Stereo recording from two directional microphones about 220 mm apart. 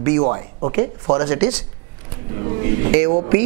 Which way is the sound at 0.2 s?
25° right (ahead or behind).